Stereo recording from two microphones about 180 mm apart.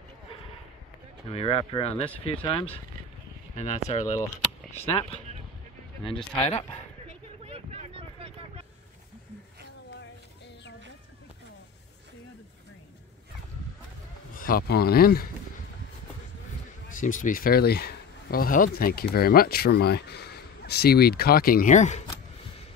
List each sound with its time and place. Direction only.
1.3 s speech: 30° left (ahead or behind)
6.4 s speech: 35° left (ahead or behind)
7.4 s a sound: 35° right (ahead or behind)
9.9 s a sound: 75° left (ahead or behind)
14.3 s speech: 50° left (ahead or behind)
16.9 s speech: 45° left (ahead or behind)